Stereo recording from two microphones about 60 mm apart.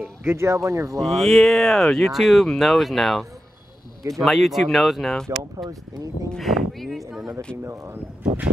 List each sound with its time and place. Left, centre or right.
0.2 s speech: right
1.0 s speech: centre
7.6 s speech: right
8.2 s speech: centre